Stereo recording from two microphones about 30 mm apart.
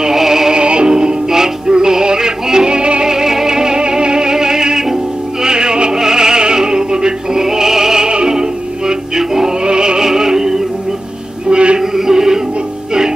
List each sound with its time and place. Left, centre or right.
0.0 s music: centre
0.5 s music: right
3.1 s music: centre
7.4 s music: centre
9.6 s music: right
11.4 s a sound: right
11.8 s music: centre